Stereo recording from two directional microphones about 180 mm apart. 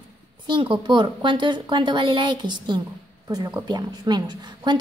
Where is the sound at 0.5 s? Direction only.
25° right (ahead or behind).